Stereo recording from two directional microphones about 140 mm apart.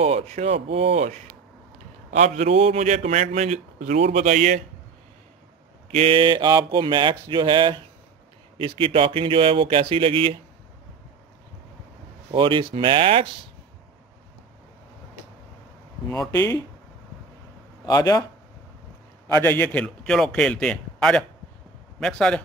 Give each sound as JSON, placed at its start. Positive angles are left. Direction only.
{"t": 0.0, "sound": "a man's voice", "side_deg": -50}
{"t": 5.9, "sound": "a sound", "side_deg": -45}
{"t": 12.3, "sound": "a sound", "side_deg": -40}
{"t": 16.1, "sound": "speech", "side_deg": 25}
{"t": 17.8, "sound": "speech", "side_deg": 25}
{"t": 19.3, "sound": "a man's voice", "side_deg": 15}